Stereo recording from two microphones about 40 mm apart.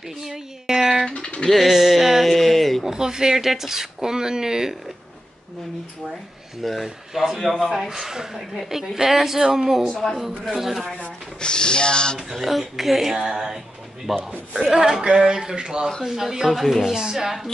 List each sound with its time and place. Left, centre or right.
0.2 s a sound: centre
1.0 s speech: left
1.5 s a sound: centre
2.8 s speech: centre
6.6 s speech: centre
7.6 s speech: centre
7.9 s speech: centre
9.8 s speech: centre
10.5 s speech: centre
11.4 s speech: left
12.2 s speech: centre
14.1 s speech: centre
14.7 s speech: centre
16.9 s speech: centre